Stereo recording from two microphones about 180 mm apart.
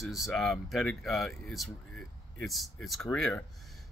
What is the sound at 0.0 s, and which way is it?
Speech, centre (ahead or behind).